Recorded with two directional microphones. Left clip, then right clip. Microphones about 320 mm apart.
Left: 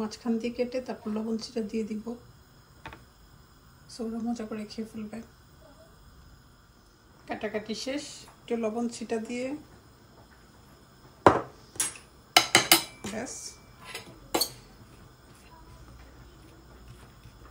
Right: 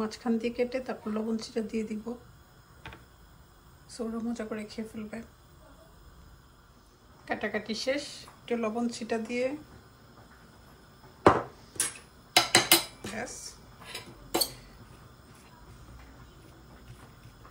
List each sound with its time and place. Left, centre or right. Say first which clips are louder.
0.0 s speech: right 1 dB; centre
2.8 s a sound: left 2 dB; centre
3.9 s speech: left 1 dB; centre
7.2 s speech: right 1 dB; centre
11.2 s a sound: left 1 dB; centre
12.4 s dishes: left 2 dB; centre
13.1 s speech: left 1 dB; centre
13.8 s tick-tock: left 1 dB; centre